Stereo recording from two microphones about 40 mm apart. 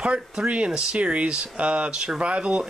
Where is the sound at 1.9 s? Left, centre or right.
Centre.